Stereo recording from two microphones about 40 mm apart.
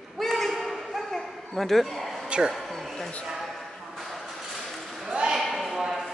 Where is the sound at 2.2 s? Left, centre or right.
Right.